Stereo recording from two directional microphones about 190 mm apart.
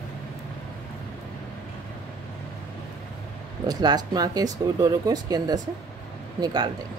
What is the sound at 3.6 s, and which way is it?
Speech, 20° right (ahead or behind).